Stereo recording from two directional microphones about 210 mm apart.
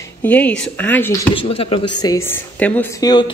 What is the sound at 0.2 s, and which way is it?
A woman's voice, 5° left (ahead or behind).